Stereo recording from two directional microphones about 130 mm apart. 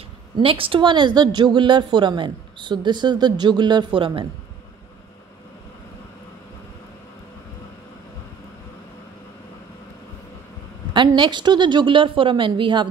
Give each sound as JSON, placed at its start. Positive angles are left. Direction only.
{"t": 0.4, "sound": "a woman's voice", "side_deg": -45}
{"t": 10.9, "sound": "a woman's voice", "side_deg": -35}